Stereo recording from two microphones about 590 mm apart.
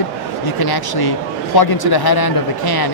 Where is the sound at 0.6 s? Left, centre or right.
Left.